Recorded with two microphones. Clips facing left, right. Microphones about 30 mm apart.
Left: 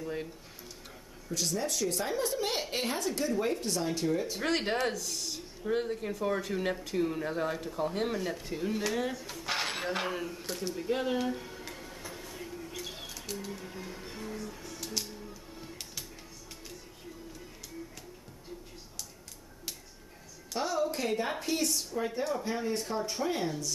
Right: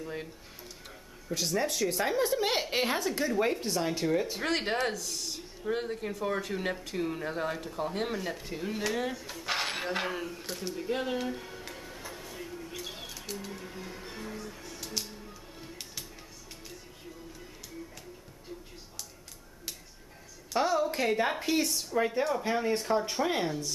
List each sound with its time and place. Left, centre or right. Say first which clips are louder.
0.0 s a woman's voice: left 2 dB; centre
1.4 s a woman's voice: right 2 dB; centre
4.4 s speech: even; centre
20.5 s a woman's voice: right 4 dB; centre